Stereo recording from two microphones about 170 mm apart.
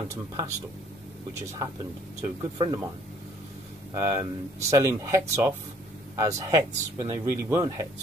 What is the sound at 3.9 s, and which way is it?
Speech, 15° right (ahead or behind).